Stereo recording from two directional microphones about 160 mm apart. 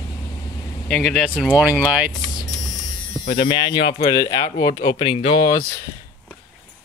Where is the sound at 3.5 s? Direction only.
30° left (ahead or behind).